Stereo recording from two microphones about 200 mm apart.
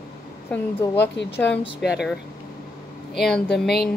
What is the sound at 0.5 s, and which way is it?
Speech, 10° left (ahead or behind).